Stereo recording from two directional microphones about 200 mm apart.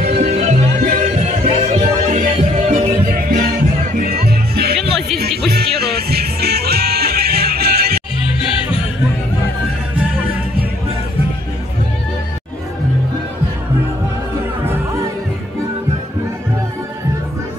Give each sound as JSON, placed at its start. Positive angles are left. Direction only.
{"t": 0.1, "sound": "music", "side_deg": -30}
{"t": 4.7, "sound": "music", "side_deg": 0}
{"t": 5.5, "sound": "music", "side_deg": -55}